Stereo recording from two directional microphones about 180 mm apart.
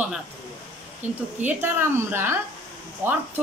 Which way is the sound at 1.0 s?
40° right (ahead or behind).